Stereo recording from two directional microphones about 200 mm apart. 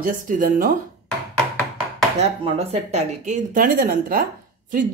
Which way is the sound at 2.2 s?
30° right (ahead or behind).